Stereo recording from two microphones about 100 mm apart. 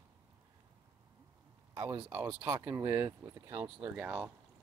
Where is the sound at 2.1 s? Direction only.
15° right (ahead or behind).